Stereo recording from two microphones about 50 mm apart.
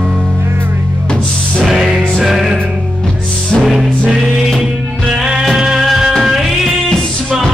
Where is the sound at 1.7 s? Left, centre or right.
Centre.